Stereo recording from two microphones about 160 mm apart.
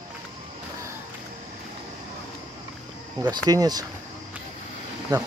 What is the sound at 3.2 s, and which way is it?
Speech, 25° right (ahead or behind).